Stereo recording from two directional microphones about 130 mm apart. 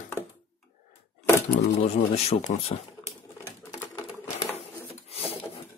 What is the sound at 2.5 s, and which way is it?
Speech, 60° left (ahead or behind).